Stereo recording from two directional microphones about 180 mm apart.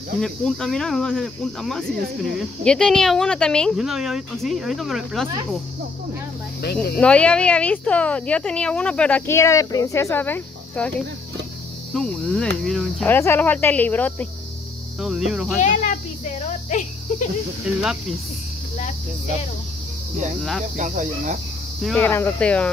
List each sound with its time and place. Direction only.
0.2 s speech: centre (ahead or behind)
6.6 s speech: 60° left (ahead or behind)
7.0 s speech: 5° left (ahead or behind)
11.9 s speech: 5° left (ahead or behind)
15.0 s speech: centre (ahead or behind)
15.6 s speech: 45° left (ahead or behind)
20.7 s speech: 45° right (ahead or behind)
21.9 s speech: 10° left (ahead or behind)